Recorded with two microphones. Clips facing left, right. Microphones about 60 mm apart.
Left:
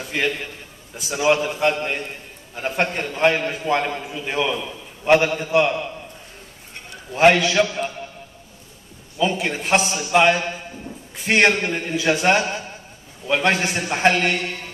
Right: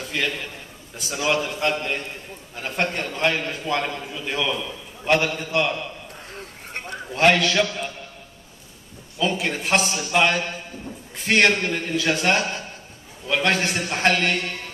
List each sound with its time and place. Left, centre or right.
0.1 s a man's voice: left
0.9 s a man's voice: centre
7.2 s a man's voice: centre
9.2 s a man's voice: centre